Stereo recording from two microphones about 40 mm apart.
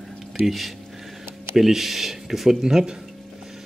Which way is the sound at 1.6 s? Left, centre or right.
Centre.